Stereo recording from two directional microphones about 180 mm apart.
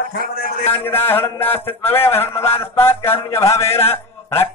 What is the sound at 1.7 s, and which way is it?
Speech, 10° left (ahead or behind).